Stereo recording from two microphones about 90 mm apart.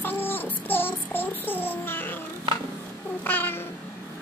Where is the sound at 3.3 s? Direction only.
25° left (ahead or behind).